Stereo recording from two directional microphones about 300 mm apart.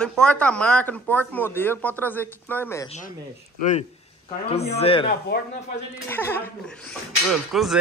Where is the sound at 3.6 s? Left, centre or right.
Left.